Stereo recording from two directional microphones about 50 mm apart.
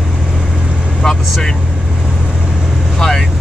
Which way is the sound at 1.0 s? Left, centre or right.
Centre.